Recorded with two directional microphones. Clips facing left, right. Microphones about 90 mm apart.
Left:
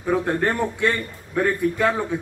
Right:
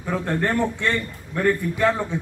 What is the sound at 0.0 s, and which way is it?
A man's voice, 15° left (ahead or behind).